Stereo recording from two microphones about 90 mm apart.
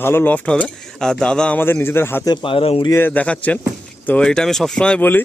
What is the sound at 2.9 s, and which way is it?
Speech, 20° left (ahead or behind).